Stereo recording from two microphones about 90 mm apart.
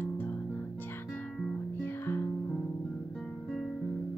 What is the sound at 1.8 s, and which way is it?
Music, 25° left (ahead or behind).